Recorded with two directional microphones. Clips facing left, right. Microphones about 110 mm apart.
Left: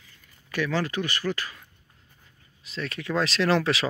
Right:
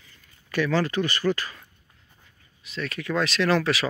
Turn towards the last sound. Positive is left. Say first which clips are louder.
# right 1 dB
turn(degrees=25)  # may be behind; listen again after turning